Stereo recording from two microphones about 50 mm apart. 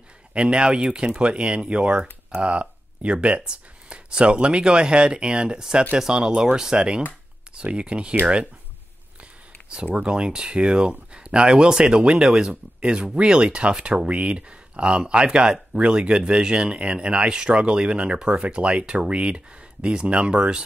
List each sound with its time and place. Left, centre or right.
0.3 s speech: right
9.9 s speech: centre